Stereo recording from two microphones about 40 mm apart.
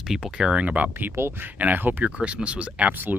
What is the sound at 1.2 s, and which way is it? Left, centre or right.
Speech, right.